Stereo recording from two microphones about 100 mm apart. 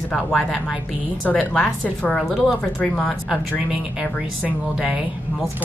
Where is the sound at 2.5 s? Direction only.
10° left (ahead or behind).